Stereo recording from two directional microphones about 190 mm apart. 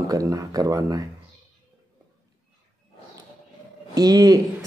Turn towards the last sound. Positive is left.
turn(degrees=-20)  # may be behind; listen again after turning